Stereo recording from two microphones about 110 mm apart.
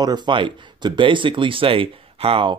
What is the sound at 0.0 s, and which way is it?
Speech, 40° right (ahead or behind).